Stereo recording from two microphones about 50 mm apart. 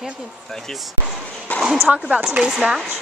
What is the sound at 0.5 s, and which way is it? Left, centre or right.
Speech, centre.